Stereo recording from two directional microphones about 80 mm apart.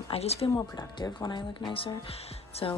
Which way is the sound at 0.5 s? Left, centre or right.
Left.